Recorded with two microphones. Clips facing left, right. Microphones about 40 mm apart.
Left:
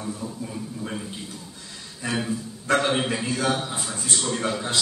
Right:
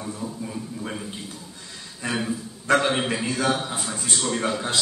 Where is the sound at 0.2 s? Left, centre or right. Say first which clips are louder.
Right 1 dB; centre.